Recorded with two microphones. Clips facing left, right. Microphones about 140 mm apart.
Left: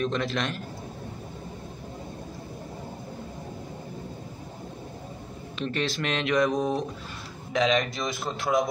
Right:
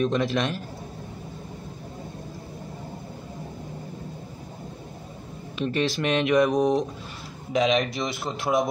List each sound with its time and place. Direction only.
0.0 s speech: 15° right (ahead or behind)
5.6 s speech: 15° right (ahead or behind)